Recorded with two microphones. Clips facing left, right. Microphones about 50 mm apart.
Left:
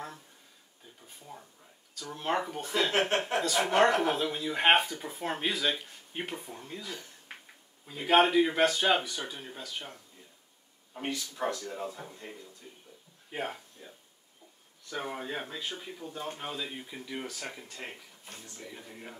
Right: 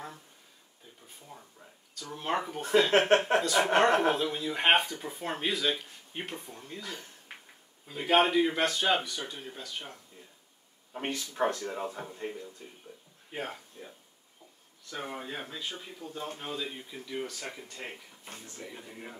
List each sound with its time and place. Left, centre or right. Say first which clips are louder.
1.0 s a sound: left 2 dB; centre
2.0 s speech: left 1 dB; centre
2.9 s a man's voice: right 5 dB; right
3.3 s speech: right 1 dB; centre
10.9 s a man's voice: right 1 dB; right
13.3 s speech: left 2 dB; centre
14.9 s speech: left 2 dB; centre